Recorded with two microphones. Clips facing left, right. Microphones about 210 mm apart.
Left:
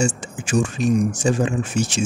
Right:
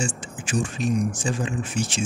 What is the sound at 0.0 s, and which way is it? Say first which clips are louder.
Speech: left 7 dB; 45° left (ahead or behind).